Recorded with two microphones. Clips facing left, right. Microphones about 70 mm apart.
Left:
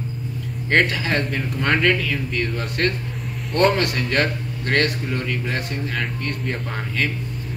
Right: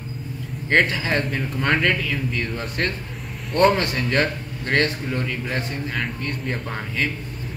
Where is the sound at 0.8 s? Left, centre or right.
Centre.